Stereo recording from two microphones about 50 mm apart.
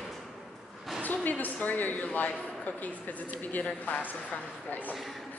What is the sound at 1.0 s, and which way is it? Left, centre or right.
Speech, left.